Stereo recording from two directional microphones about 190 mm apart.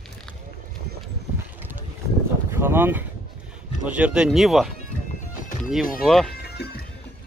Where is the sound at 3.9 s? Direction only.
5° right (ahead or behind).